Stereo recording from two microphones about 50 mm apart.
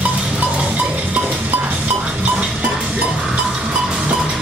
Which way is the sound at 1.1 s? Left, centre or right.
Right.